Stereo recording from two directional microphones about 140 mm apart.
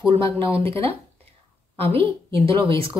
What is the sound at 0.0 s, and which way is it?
Speech, 40° right (ahead or behind).